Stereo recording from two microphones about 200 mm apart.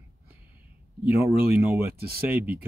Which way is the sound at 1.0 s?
10° right (ahead or behind).